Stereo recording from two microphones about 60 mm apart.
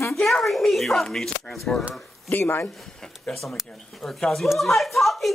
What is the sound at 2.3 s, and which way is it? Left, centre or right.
Speech, left.